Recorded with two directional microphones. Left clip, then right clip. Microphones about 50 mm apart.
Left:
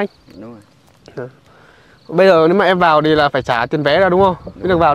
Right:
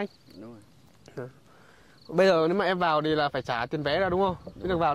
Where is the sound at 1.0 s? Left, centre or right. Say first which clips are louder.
Left 11 dB; centre.